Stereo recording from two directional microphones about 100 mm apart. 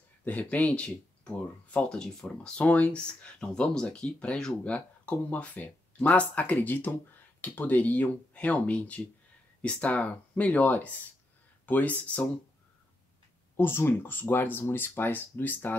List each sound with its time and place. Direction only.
0.2 s speech: 15° left (ahead or behind)
13.6 s speech: 20° left (ahead or behind)